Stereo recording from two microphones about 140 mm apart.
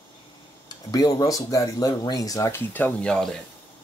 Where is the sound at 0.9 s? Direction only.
25° left (ahead or behind); by 3.3 s 5° left (ahead or behind).